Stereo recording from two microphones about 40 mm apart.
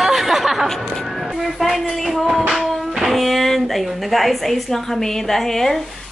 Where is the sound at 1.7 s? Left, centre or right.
Centre.